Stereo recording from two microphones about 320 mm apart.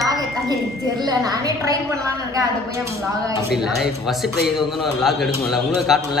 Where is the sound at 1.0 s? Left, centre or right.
Centre.